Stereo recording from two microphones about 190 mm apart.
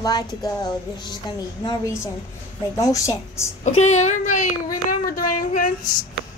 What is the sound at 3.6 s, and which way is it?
Speech, 35° left (ahead or behind).